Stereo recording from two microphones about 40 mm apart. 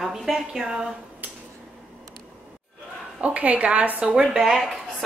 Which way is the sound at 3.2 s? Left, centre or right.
Right.